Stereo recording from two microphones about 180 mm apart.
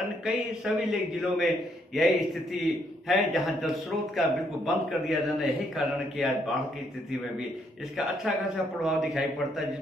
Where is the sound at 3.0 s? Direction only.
Centre (ahead or behind).